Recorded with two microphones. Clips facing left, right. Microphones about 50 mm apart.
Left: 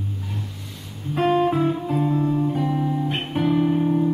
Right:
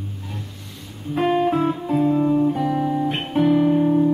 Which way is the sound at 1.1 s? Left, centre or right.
Centre.